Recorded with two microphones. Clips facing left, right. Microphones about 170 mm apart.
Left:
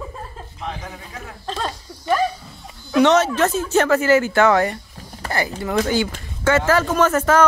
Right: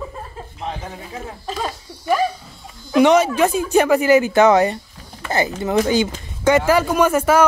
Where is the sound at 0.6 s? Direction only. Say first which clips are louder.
Right 2 dB; 25° right (ahead or behind).